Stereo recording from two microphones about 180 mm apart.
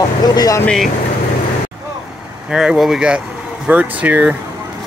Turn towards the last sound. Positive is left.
turn(degrees=-10)  # may be behind; listen again after turning